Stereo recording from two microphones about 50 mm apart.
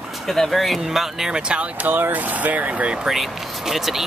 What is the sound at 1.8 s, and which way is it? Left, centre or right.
Speech, right.